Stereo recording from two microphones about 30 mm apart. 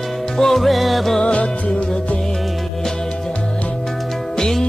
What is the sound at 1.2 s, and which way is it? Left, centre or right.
Music, left.